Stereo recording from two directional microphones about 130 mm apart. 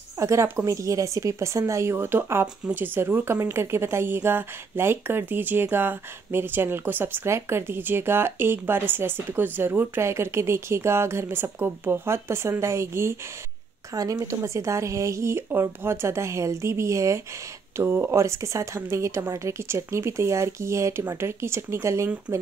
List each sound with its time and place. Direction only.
0.2 s speech: 25° right (ahead or behind)